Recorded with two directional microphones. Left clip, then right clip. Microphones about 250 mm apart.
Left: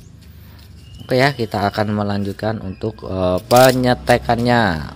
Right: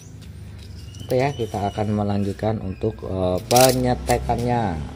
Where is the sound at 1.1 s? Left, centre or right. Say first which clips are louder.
Left 6 dB; left.